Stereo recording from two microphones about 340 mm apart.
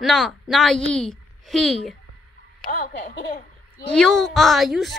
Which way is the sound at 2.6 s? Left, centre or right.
Left.